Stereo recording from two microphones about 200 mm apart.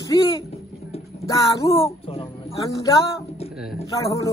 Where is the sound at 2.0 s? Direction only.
30° left (ahead or behind).